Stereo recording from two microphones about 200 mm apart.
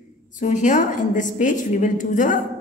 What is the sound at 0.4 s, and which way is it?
A woman's voice, 35° left (ahead or behind).